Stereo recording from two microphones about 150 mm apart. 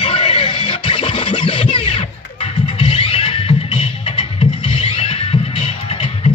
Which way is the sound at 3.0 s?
35° left (ahead or behind).